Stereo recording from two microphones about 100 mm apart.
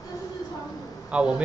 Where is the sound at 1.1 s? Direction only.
10° right (ahead or behind).